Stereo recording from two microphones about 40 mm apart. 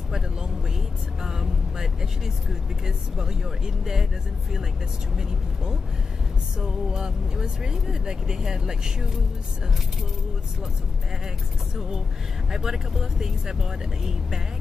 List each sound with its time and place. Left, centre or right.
1.2 s speech: centre
6.6 s speech: centre
12.4 s speech: centre